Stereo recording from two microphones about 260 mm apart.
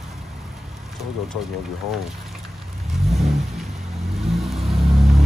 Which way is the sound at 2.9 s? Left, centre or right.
Centre.